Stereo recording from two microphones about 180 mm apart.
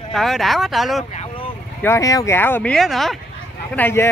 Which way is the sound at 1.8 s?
15° left (ahead or behind).